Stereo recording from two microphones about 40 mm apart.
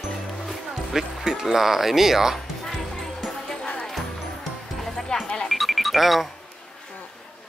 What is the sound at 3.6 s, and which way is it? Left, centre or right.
Music, centre.